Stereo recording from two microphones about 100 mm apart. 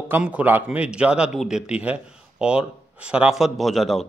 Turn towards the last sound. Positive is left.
turn(degrees=0)  # may be behind; listen again after turning